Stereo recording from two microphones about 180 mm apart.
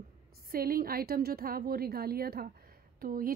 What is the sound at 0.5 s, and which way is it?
A woman's voice, 55° right (ahead or behind).